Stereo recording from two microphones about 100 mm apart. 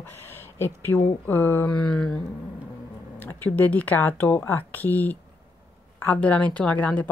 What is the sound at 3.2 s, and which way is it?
A woman's voice, 15° left (ahead or behind).